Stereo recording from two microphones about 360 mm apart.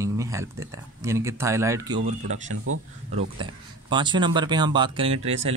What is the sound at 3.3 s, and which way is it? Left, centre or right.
Speech, centre.